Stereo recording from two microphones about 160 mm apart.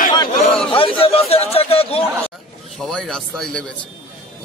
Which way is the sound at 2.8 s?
5° left (ahead or behind).